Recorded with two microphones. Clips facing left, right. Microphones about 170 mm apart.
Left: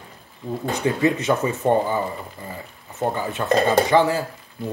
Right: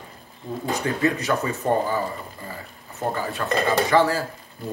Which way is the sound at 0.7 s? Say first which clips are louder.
Left 3 dB; 20° left (ahead or behind).